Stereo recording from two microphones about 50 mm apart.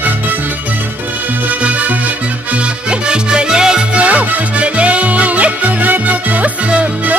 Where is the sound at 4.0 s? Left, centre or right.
Right.